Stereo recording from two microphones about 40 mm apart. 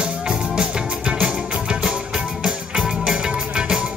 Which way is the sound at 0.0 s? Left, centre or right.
Right.